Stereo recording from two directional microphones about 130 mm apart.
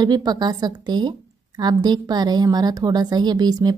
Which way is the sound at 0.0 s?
30° right (ahead or behind).